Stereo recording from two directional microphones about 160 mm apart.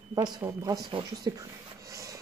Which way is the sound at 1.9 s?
20° right (ahead or behind).